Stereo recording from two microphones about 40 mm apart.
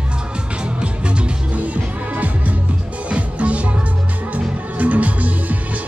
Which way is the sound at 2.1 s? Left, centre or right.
Right.